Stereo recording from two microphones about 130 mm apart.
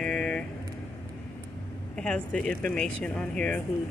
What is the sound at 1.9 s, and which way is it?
Speech, 5° left (ahead or behind).